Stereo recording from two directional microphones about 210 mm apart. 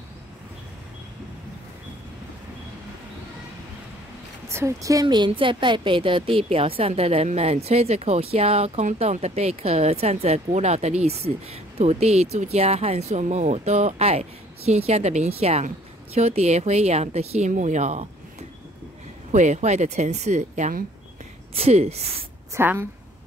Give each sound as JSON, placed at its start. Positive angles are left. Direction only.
{"t": 4.5, "sound": "a woman's voice", "side_deg": -15}
{"t": 19.3, "sound": "a woman's voice", "side_deg": -35}
{"t": 22.5, "sound": "a woman's voice", "side_deg": -10}